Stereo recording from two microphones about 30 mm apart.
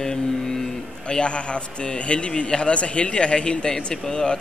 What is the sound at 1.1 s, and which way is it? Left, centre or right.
Speech, left.